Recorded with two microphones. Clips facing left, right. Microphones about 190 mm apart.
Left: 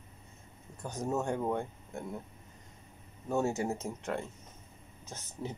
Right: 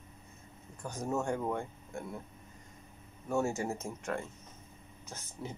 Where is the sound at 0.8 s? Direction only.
20° left (ahead or behind).